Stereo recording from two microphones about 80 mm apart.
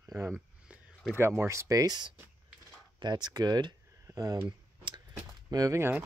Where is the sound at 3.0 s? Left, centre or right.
Right.